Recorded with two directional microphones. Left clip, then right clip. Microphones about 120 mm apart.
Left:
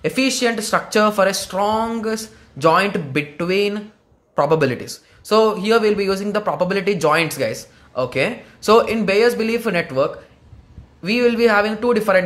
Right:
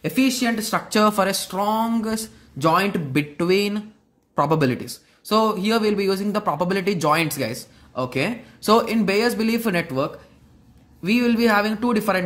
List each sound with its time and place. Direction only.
0.0 s speech: 20° right (ahead or behind)
0.8 s a man's voice: 35° right (ahead or behind)